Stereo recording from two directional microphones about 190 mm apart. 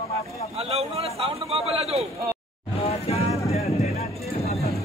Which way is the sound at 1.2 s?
30° right (ahead or behind).